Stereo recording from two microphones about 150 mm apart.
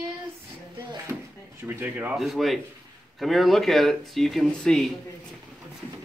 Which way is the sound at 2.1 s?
Centre (ahead or behind).